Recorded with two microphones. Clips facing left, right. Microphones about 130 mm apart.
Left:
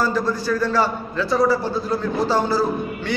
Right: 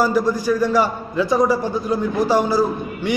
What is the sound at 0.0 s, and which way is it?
A man's voice, 15° right (ahead or behind).